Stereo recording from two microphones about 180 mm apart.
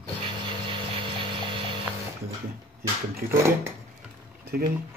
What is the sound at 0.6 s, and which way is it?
Vehicle, 30° right (ahead or behind).